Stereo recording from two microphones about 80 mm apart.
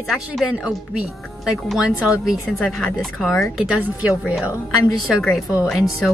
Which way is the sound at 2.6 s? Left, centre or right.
Centre.